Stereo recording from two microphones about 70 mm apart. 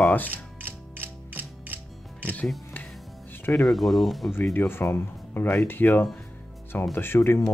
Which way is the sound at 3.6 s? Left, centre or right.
Centre.